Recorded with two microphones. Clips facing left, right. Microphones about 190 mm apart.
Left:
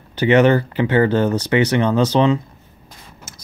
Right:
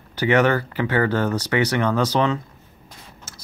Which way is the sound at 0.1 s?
20° left (ahead or behind).